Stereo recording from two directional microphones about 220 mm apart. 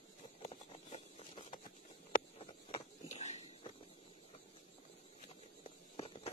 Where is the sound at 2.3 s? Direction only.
25° left (ahead or behind).